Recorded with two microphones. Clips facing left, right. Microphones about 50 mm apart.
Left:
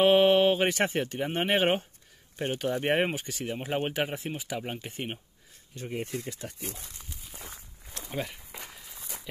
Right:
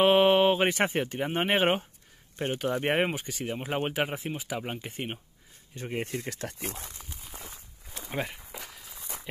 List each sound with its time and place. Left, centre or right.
0.0 s speech: centre
5.8 s speech: right
6.1 s speech: right
7.0 s a sound: centre
8.1 s speech: centre
8.5 s walk: centre